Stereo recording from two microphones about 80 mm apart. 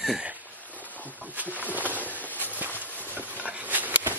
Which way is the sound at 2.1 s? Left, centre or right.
Left.